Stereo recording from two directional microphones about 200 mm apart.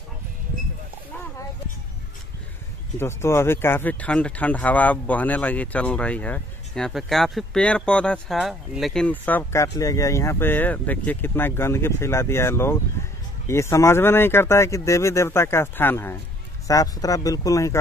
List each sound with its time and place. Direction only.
3.0 s speech: 15° left (ahead or behind)